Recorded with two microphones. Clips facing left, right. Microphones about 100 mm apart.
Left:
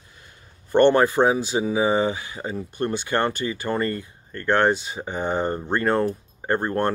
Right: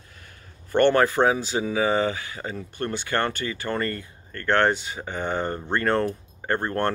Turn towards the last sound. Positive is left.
turn(degrees=15)  # may be behind; listen again after turning